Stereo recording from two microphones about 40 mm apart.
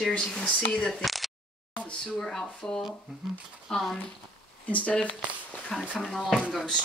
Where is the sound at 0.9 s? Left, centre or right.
Centre.